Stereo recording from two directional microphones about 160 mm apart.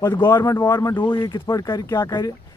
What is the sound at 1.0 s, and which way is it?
Speech, 30° left (ahead or behind).